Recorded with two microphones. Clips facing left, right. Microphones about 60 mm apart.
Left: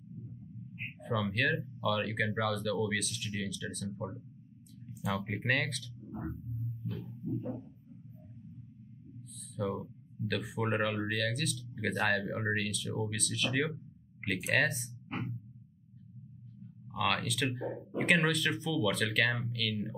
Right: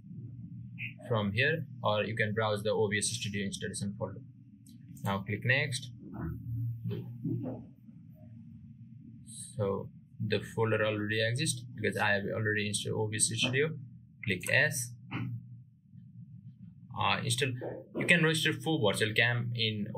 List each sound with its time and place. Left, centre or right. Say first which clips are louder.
0.9 s speech: right 1 dB; centre
5.9 s music: even; centre
6.5 s roaring cats: even; centre
7.2 s music: right 1 dB; right
9.6 s speech: right 3 dB; centre
16.9 s speech: even; centre